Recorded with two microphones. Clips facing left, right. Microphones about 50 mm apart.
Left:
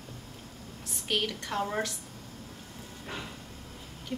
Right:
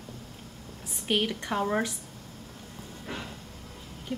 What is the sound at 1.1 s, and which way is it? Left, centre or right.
Speech, centre.